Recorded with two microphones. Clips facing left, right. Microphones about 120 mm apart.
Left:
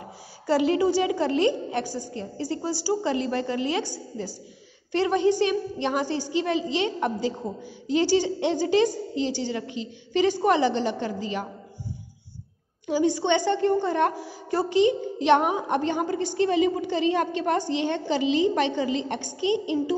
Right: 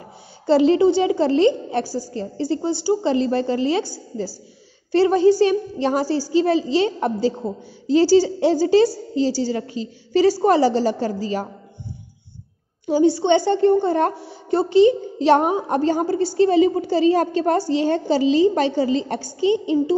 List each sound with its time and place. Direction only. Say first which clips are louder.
0.5 s a woman's voice: right 7 dB; 30° right (ahead or behind)
12.8 s a child's voice: right 6 dB; 30° right (ahead or behind)